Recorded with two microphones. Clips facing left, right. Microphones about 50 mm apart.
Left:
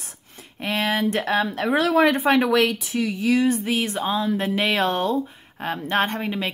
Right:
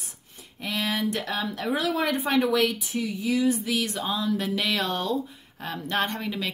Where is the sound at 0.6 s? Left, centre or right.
Left.